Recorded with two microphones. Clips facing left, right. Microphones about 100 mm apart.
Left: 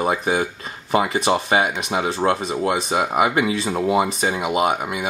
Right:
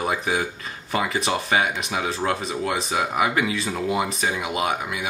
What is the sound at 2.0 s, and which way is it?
Speech, 30° left (ahead or behind).